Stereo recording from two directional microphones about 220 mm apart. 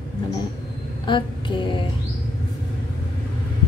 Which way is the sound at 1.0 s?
20° left (ahead or behind).